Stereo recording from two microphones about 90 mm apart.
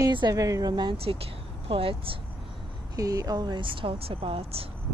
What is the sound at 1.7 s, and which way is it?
Speech, 90° right.